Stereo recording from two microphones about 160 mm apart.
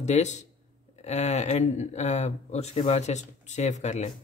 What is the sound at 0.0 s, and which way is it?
A man's voice, 45° left (ahead or behind).